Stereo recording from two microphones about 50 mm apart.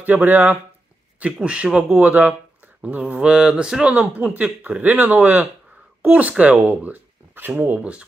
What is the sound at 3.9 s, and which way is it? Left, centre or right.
Speech, right.